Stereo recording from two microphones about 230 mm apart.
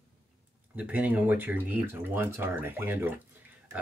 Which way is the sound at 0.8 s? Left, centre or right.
Centre.